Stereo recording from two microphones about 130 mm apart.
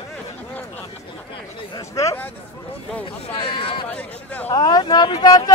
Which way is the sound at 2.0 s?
25° left (ahead or behind).